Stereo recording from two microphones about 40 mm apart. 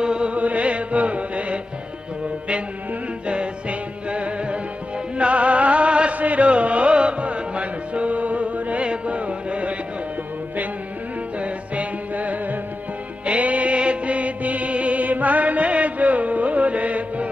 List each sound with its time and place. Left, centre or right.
0.0 s chant: right
0.4 s music: right
3.3 s music: right
11.3 s music: right